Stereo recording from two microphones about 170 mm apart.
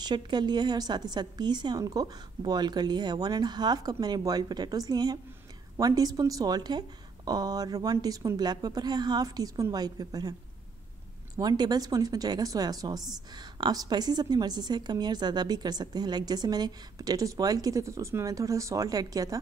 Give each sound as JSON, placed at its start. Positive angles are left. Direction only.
{"t": 0.0, "sound": "a woman's voice", "side_deg": -25}
{"t": 11.3, "sound": "a woman's voice", "side_deg": -25}